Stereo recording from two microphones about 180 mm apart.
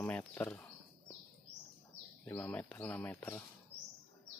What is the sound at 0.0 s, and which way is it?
Speech, 10° left (ahead or behind).